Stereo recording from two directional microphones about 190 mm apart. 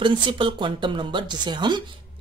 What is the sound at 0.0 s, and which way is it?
A woman's voice, 25° right (ahead or behind).